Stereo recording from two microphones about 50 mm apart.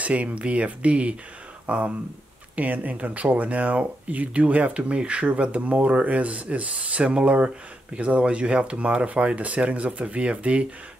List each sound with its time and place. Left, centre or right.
0.0 s speech: right